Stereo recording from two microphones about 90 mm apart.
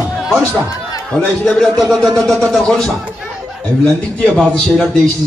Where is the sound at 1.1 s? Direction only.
15° left (ahead or behind).